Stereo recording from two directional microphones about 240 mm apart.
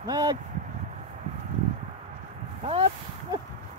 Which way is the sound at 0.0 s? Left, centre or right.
Centre.